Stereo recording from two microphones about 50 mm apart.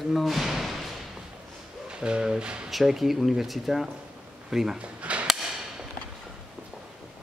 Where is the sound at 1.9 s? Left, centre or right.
Centre.